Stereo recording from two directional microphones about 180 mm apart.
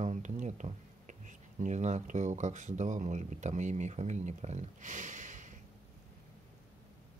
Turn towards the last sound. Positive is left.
turn(degrees=-45)  # may be behind; listen again after turning